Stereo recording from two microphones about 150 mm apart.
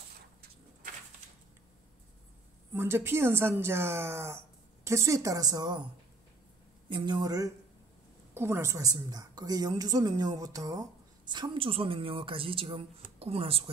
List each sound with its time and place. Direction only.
2.7 s a woman's voice: 15° right (ahead or behind)
6.9 s a woman's voice: 30° right (ahead or behind)